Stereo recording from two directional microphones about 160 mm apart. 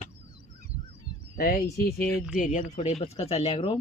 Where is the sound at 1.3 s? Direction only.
70° left (ahead or behind).